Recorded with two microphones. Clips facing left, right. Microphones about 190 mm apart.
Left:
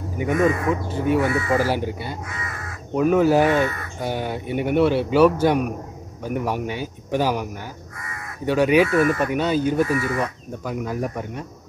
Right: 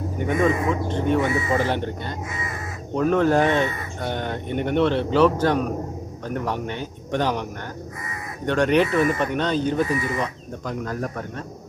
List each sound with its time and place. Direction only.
0.2 s a man's voice: 5° left (ahead or behind)
1.2 s speech: 20° right (ahead or behind)
1.5 s a man's voice: 5° left (ahead or behind)
8.5 s a man's voice: 5° left (ahead or behind)
9.8 s speech: 20° right (ahead or behind)
10.1 s a man's voice: 10° left (ahead or behind)